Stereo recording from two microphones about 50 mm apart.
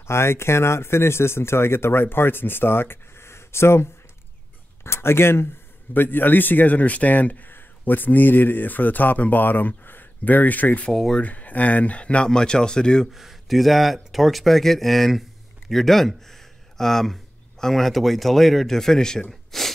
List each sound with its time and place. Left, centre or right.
0.0 s speech: left
5.9 s speech: left
10.9 s speech: centre
11.1 s speech: left
13.1 s speech: centre
19.5 s snort: centre